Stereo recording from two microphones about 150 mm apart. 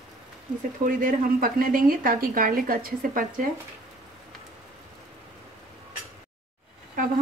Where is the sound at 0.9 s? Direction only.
65° right (ahead or behind).